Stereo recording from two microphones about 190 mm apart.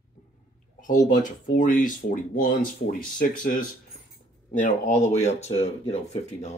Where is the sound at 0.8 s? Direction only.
40° left (ahead or behind).